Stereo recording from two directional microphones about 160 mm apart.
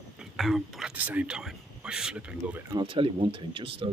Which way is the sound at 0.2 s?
Centre (ahead or behind).